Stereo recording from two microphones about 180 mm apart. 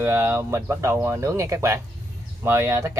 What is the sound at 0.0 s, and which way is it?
Speech, 10° right (ahead or behind).